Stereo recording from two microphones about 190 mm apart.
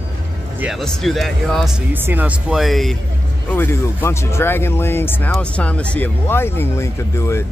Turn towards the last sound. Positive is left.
turn(degrees=15)  # may be behind; listen again after turning